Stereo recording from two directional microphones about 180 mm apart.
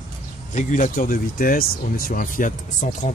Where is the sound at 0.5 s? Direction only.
45° left (ahead or behind).